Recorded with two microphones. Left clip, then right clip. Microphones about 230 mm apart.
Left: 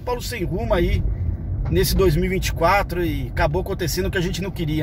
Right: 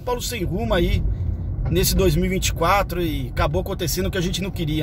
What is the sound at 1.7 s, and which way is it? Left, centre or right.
Speech, centre.